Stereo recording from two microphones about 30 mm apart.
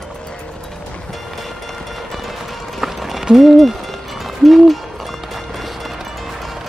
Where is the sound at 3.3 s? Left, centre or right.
Centre.